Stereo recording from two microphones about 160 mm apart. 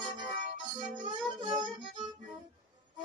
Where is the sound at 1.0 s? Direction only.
30° right (ahead or behind).